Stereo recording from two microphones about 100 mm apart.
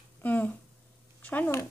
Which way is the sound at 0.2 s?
15° left (ahead or behind).